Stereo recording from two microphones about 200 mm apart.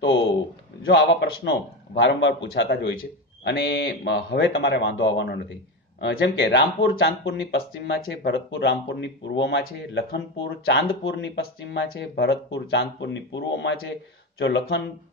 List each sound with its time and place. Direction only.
0.8 s a man's voice: 60° left (ahead or behind)